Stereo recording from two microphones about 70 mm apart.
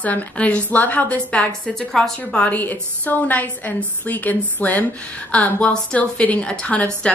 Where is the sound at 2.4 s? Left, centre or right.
Left.